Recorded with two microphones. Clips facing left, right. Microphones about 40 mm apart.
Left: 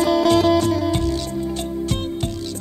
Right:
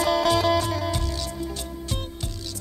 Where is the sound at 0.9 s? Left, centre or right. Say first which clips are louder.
Left 7 dB; left.